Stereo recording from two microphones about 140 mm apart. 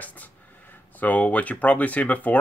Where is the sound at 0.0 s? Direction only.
10° left (ahead or behind).